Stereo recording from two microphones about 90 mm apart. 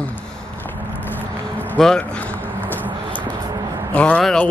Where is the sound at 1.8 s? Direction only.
10° left (ahead or behind).